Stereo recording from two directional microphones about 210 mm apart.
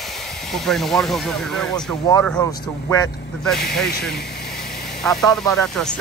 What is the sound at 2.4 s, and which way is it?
Speech, 15° left (ahead or behind).